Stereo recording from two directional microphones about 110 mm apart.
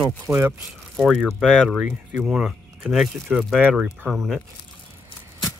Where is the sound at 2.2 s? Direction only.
5° right (ahead or behind).